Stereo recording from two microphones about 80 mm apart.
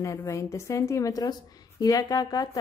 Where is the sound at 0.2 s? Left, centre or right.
Left.